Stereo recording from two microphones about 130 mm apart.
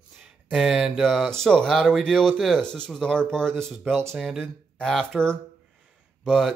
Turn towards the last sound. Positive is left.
turn(degrees=5)  # may be behind; listen again after turning